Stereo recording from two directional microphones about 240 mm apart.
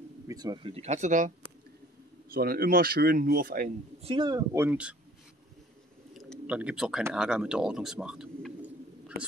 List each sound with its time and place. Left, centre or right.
0.3 s speech: centre
2.3 s speech: right
4.0 s speech: centre
6.1 s speech: centre